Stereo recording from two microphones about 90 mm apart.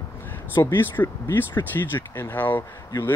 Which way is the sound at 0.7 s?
25° left (ahead or behind).